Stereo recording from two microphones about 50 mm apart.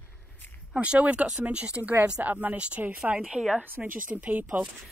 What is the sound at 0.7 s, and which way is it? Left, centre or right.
Speech, right.